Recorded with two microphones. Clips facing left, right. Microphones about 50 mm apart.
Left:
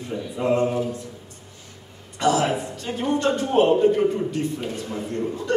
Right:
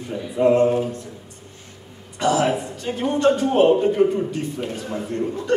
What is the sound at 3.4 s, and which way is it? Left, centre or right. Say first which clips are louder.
Speech: right 1 dB; centre.